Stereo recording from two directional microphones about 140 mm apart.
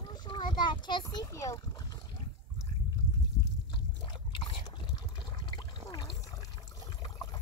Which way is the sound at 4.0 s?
30° left (ahead or behind).